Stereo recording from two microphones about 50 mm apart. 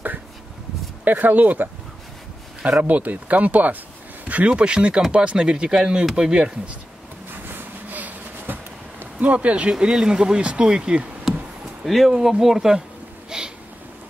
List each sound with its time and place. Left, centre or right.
1.0 s speech: right
2.8 s speech: right; by 6.5 s centre
7.2 s a sound: right
9.2 s speech: right
11.8 s speech: centre
13.3 s a sound: centre